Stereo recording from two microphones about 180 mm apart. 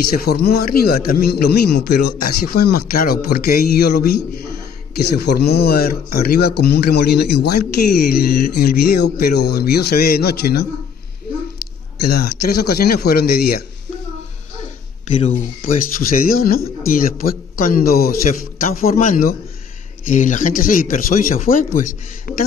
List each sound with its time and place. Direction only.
0.1 s speech: 60° left (ahead or behind)
12.0 s speech: 60° left (ahead or behind)
15.1 s speech: 40° left (ahead or behind)